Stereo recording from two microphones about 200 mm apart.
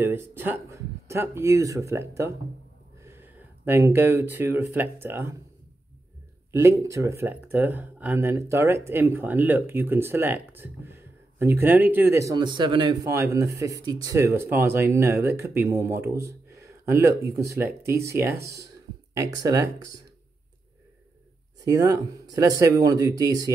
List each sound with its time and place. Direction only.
0.0 s speech: 10° right (ahead or behind)
6.5 s speech: 15° right (ahead or behind)
21.6 s speech: 15° right (ahead or behind)